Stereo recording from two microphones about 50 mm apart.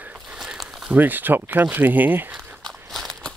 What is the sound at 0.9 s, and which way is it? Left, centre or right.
Speech, right.